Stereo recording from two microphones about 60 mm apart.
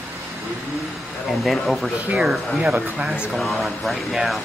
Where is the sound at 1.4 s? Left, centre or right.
Centre.